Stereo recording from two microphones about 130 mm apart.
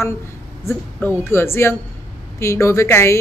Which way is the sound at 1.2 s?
20° left (ahead or behind).